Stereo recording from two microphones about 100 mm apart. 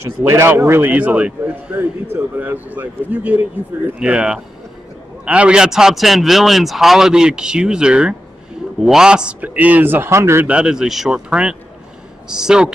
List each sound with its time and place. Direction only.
0.2 s speech: 25° right (ahead or behind)
10.4 s speech: 10° right (ahead or behind)